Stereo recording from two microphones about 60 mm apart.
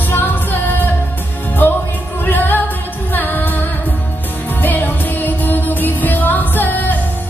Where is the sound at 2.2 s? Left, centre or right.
Left.